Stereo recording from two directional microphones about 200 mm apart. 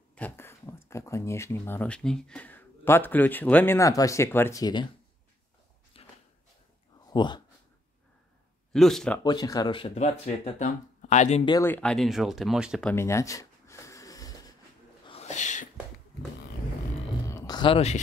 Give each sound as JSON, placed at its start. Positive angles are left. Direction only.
{"t": 0.1, "sound": "speech", "side_deg": 10}
{"t": 5.9, "sound": "walk", "side_deg": 30}
{"t": 7.1, "sound": "speech", "side_deg": 20}
{"t": 8.7, "sound": "speech", "side_deg": 0}
{"t": 9.2, "sound": "speech", "side_deg": 20}
{"t": 11.4, "sound": "speech", "side_deg": 15}
{"t": 12.9, "sound": "a sound", "side_deg": 15}
{"t": 15.0, "sound": "a sound", "side_deg": 30}
{"t": 17.3, "sound": "a sound", "side_deg": 20}